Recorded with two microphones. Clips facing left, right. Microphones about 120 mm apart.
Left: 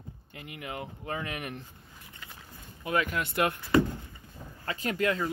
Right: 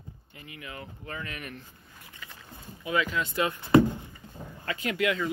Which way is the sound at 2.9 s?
50° left (ahead or behind).